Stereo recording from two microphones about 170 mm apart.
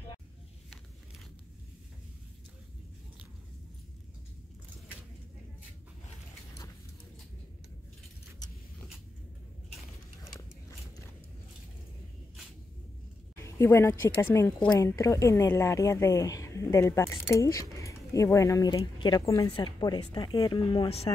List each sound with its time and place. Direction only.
13.4 s a woman's voice: 15° left (ahead or behind); by 21.1 s 30° left (ahead or behind)